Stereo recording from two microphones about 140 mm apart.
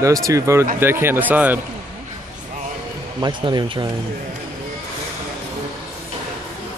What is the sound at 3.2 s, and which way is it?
Speech, 30° right (ahead or behind).